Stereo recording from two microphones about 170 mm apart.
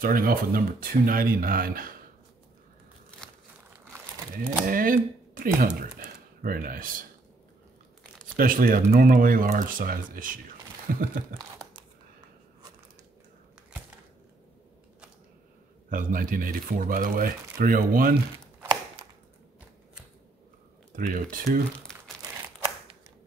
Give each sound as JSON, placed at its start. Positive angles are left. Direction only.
{"t": 0.0, "sound": "speech", "side_deg": -55}
{"t": 4.6, "sound": "speech", "side_deg": -55}
{"t": 8.4, "sound": "speech", "side_deg": -55}
{"t": 15.9, "sound": "speech", "side_deg": -55}
{"t": 20.9, "sound": "speech", "side_deg": -55}
{"t": 21.9, "sound": "crumpling", "side_deg": 5}